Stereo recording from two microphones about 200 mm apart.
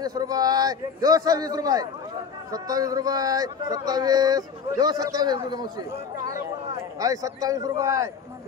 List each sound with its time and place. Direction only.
0.0 s a man's voice: 20° right (ahead or behind)